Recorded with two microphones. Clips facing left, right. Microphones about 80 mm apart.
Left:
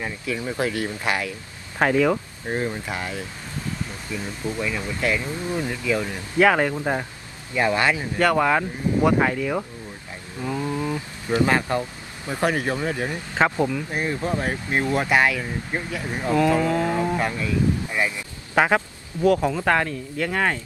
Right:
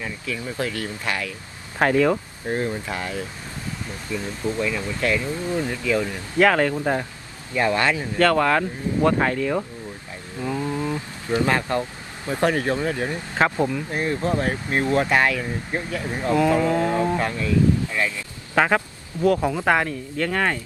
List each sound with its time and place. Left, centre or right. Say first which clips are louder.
0.0 s speech: left 2 dB; left
1.8 s a sound: right 1 dB; centre
2.5 s speech: right 1 dB; centre
4.6 s speech: even; left
7.5 s speech: even; centre
10.4 s a sound: right 1 dB; centre
11.4 s speech: left 1 dB; centre
13.4 s a sound: even; centre
13.9 s speech: right 4 dB; centre
16.3 s a sound: even; centre
17.2 s speech: right 2 dB; centre
19.4 s speech: right 1 dB; centre
20.2 s speech: even; centre